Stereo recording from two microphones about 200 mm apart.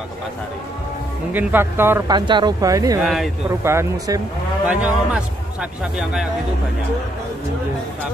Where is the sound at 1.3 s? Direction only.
10° right (ahead or behind).